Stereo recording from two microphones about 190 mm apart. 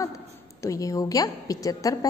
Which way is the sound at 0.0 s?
15° left (ahead or behind).